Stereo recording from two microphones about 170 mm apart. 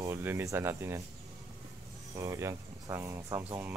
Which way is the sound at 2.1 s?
15° right (ahead or behind).